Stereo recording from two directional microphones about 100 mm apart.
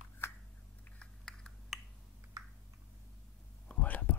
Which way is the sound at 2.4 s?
40° right (ahead or behind).